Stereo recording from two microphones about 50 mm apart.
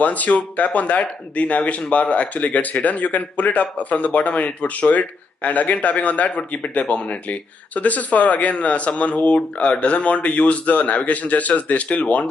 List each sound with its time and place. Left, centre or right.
0.0 s speech: left